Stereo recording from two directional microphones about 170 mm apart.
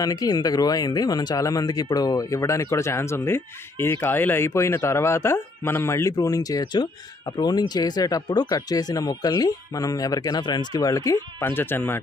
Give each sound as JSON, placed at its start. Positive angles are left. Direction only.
{"t": 0.0, "sound": "speech", "side_deg": 20}